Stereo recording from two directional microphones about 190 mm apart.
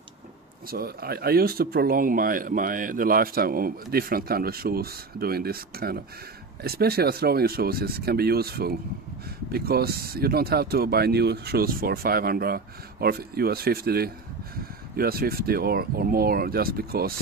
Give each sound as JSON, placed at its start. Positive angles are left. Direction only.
{"t": 0.7, "sound": "speech", "side_deg": -50}